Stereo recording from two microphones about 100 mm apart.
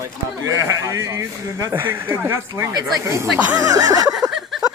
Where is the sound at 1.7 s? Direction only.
20° right (ahead or behind); by 4.0 s 40° right (ahead or behind).